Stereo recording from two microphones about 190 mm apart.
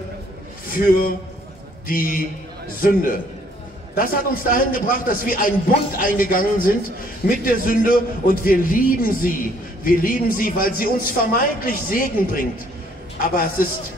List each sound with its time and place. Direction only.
0.7 s a man's voice: 50° left (ahead or behind)